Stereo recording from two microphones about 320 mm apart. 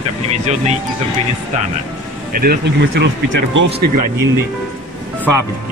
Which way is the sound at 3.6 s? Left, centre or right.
Right.